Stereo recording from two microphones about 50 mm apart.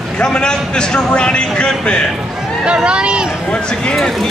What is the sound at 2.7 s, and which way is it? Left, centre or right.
Speech, centre.